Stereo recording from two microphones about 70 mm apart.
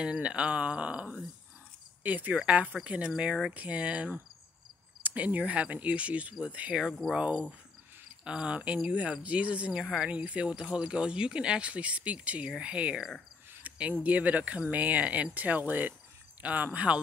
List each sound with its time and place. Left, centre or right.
0.0 s speech: centre
2.0 s speech: right
6.8 s speech: centre
7.2 s speech: centre
9.8 s speech: centre
10.1 s speech: centre